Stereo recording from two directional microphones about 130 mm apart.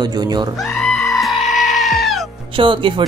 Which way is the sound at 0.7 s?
5° left (ahead or behind).